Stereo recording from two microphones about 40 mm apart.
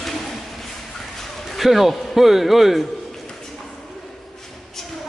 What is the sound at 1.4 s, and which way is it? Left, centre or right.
A man's voice, centre.